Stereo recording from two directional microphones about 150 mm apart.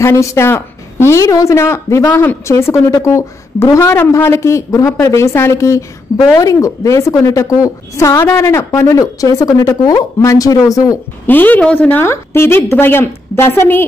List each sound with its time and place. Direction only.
0.0 s a woman's voice: 20° left (ahead or behind)
11.2 s a woman's voice: 10° left (ahead or behind)